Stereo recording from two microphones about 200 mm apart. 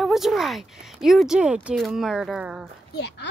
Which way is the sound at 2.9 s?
60° left (ahead or behind).